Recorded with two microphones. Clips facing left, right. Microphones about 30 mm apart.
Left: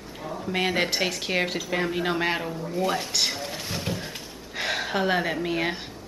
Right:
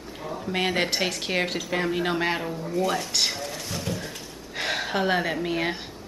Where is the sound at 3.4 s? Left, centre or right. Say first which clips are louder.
Even; left.